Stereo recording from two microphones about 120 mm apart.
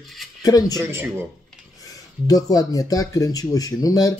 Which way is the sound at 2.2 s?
30° left (ahead or behind).